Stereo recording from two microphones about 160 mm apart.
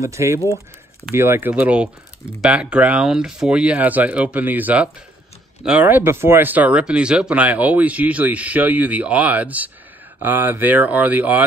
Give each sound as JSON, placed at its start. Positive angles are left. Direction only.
{"t": 0.0, "sound": "speech", "side_deg": -20}